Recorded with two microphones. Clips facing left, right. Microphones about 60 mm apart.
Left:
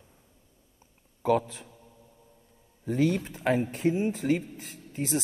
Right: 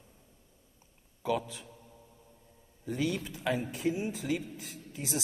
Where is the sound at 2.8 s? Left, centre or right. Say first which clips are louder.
Left 7 dB; left.